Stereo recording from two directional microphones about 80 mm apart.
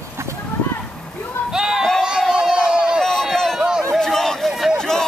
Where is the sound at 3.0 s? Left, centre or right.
Centre.